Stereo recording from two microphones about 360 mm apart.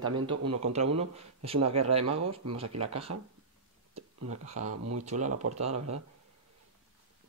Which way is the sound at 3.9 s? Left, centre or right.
Right.